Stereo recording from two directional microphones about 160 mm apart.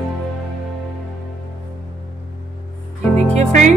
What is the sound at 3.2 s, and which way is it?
Music, 45° right (ahead or behind).